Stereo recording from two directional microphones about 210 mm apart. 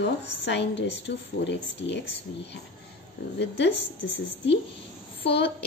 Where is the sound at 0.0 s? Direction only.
55° left (ahead or behind).